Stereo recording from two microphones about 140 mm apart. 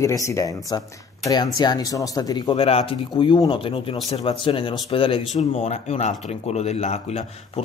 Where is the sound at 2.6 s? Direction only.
45° left (ahead or behind).